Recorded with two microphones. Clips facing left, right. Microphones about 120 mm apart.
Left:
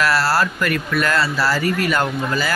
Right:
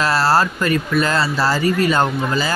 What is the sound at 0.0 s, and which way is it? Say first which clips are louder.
Speech: right 2 dB; 20° right (ahead or behind).